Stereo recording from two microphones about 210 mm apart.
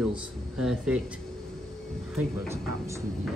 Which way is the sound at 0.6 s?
Centre (ahead or behind).